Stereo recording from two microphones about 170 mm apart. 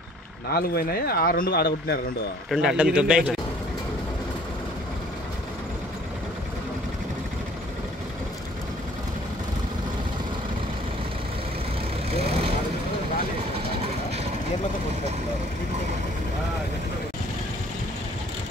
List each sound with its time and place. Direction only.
0.5 s speech: 65° left (ahead or behind)
2.5 s speech: 5° right (ahead or behind)
12.1 s vehicle: 35° right (ahead or behind)